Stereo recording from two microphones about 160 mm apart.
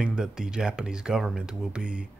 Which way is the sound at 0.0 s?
5° right (ahead or behind).